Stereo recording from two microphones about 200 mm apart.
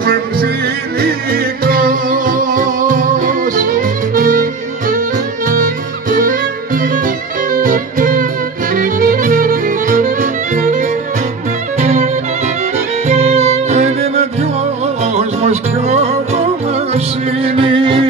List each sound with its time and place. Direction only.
0.0 s music: 50° right (ahead or behind)
13.1 s music: 30° right (ahead or behind)